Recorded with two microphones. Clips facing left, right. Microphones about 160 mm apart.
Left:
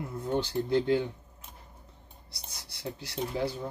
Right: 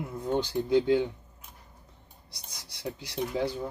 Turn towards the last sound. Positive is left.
turn(degrees=-15)  # may be behind; listen again after turning